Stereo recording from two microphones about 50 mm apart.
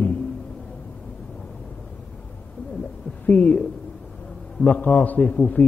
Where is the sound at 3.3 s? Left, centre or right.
Left.